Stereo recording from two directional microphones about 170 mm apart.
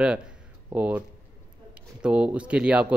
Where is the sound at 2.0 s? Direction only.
5° right (ahead or behind).